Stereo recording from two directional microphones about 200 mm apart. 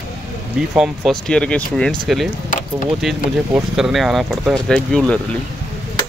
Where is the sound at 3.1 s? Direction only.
Centre (ahead or behind).